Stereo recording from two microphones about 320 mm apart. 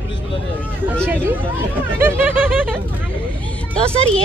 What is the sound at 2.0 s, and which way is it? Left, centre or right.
Snicker, centre.